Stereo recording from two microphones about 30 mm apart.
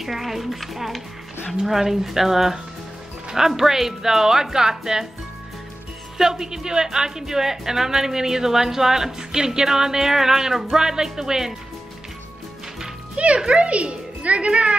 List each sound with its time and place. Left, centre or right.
0.0 s a woman's voice: centre
6.1 s a woman's voice: centre
13.2 s a child's voice: right